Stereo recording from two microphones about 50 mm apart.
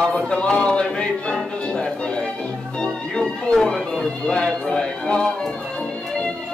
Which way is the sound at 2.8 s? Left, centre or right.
Centre.